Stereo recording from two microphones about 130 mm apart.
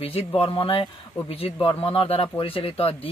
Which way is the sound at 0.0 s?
45° left (ahead or behind).